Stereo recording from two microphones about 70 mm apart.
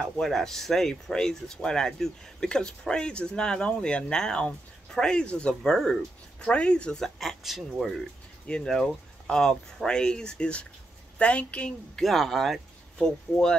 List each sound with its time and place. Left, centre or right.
0.0 s speech: centre
5.6 s speech: centre
6.4 s speech: centre
7.2 s speech: centre
8.5 s speech: centre
12.0 s speech: centre